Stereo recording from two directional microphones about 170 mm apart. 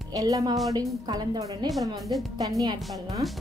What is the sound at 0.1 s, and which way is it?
A woman's voice, 20° right (ahead or behind).